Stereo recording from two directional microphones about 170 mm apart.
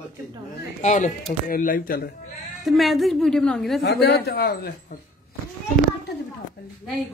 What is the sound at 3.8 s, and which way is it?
A man's voice, 70° left (ahead or behind).